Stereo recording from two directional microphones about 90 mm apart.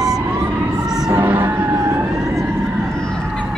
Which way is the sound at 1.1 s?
20° right (ahead or behind).